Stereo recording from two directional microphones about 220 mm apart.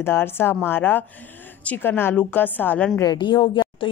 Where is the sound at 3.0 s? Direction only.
20° left (ahead or behind).